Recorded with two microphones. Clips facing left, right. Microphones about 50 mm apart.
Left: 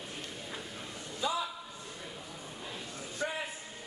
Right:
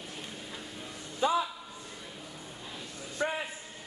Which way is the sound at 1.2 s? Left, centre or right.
Right.